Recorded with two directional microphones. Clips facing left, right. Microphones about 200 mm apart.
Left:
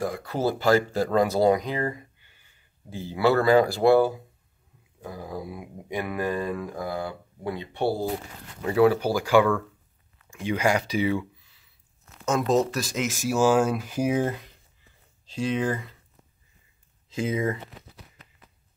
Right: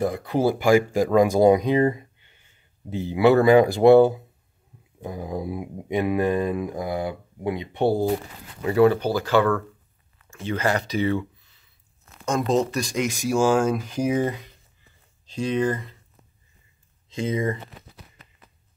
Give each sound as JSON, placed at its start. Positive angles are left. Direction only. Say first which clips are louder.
{"t": 0.0, "sound": "speech", "louder": "right 4 dB", "side_deg": -20}
{"t": 8.6, "sound": "speech", "louder": "right 2 dB", "side_deg": 0}
{"t": 12.3, "sound": "speech", "louder": "even", "side_deg": 0}
{"t": 17.1, "sound": "speech", "louder": "right 1 dB", "side_deg": 5}